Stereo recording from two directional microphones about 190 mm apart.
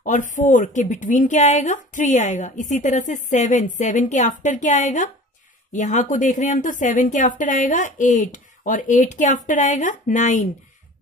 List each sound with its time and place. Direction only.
0.0 s speech: 40° left (ahead or behind)